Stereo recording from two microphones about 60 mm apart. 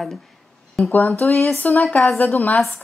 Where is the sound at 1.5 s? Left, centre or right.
Left.